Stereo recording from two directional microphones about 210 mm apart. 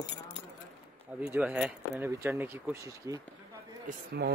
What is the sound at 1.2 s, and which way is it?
Speech, 5° right (ahead or behind).